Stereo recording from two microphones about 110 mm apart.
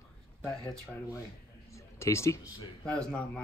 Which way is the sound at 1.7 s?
25° left (ahead or behind).